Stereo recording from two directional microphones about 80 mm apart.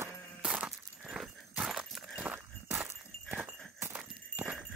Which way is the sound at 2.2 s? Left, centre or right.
Centre.